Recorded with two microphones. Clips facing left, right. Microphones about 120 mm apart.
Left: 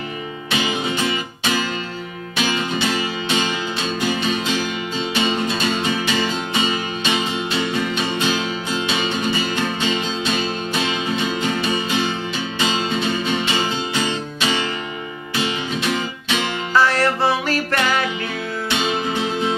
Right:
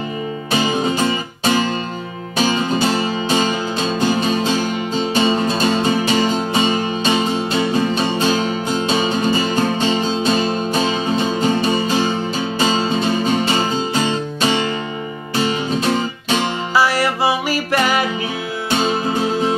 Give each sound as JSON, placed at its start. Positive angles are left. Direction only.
{"t": 0.5, "sound": "music", "side_deg": -40}
{"t": 16.7, "sound": "music", "side_deg": -10}
{"t": 18.7, "sound": "music", "side_deg": -40}